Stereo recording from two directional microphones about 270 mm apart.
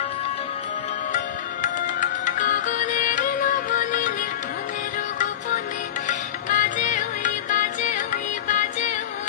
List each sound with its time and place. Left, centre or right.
1.1 s music: left
6.0 s music: left